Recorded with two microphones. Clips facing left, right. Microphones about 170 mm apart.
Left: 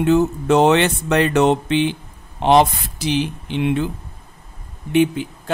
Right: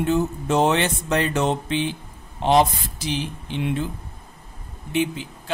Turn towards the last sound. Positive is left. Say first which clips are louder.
# left 7 dB
turn(degrees=60)  # may be behind; listen again after turning